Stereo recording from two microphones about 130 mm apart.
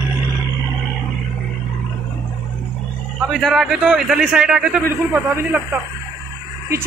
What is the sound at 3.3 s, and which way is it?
A man's voice, centre (ahead or behind).